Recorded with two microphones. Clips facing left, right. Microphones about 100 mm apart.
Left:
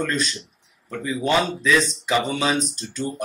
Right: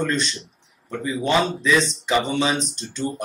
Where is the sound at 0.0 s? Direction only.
5° left (ahead or behind).